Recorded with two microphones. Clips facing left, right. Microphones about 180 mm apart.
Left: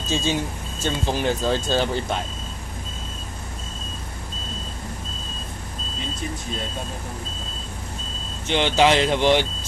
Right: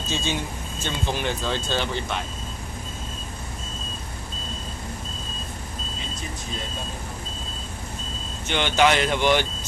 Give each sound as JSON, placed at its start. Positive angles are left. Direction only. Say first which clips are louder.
{"t": 0.1, "sound": "speech", "louder": "left 4 dB", "side_deg": 40}
{"t": 8.5, "sound": "speech", "louder": "left 2 dB", "side_deg": 30}